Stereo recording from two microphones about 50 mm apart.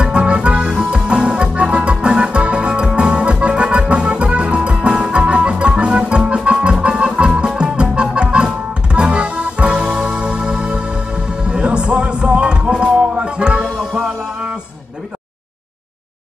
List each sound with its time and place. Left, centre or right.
0.0 s music: right